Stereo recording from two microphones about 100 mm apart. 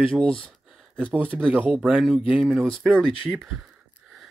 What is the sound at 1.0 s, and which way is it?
Speech, 20° right (ahead or behind).